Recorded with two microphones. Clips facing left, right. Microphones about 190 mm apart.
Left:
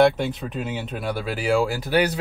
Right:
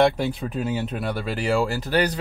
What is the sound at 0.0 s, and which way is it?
Speech, 5° right (ahead or behind).